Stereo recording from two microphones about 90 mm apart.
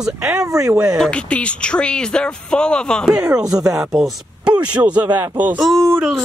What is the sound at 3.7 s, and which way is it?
Speech, 5° right (ahead or behind).